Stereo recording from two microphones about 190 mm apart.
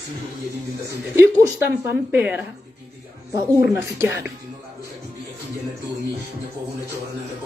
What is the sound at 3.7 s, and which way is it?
Speech, 15° right (ahead or behind).